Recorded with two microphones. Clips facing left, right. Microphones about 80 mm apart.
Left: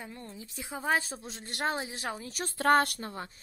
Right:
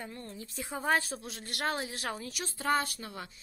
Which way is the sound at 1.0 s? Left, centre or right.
Left.